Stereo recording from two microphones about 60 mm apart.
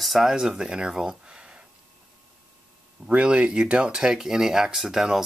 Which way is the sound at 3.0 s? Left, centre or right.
Centre.